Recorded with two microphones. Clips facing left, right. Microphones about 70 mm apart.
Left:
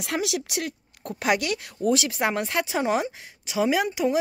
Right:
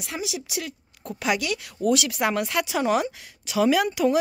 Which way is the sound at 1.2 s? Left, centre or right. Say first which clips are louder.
Left 1 dB; left.